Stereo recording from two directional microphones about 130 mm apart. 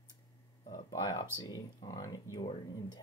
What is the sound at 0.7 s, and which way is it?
Speech, 30° left (ahead or behind).